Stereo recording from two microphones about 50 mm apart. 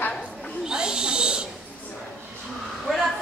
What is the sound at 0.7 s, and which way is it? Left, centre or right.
Owl, centre.